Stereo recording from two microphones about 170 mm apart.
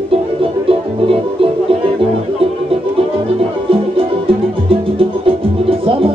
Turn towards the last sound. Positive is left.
turn(degrees=-30)  # may be behind; listen again after turning